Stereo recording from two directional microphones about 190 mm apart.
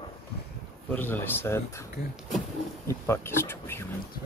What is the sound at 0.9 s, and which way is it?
Speech, 10° left (ahead or behind).